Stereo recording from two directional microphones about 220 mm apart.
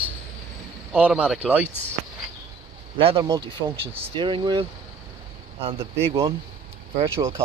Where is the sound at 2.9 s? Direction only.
20° right (ahead or behind).